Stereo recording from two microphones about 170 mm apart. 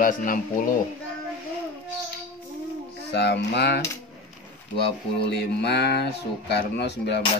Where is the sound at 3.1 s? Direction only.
85° left.